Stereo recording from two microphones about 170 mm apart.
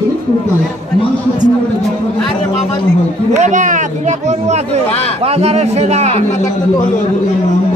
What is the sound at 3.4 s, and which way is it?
A man's voice, 45° right (ahead or behind).